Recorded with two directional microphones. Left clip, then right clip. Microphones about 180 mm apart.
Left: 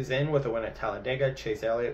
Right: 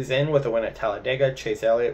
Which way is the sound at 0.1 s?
15° right (ahead or behind).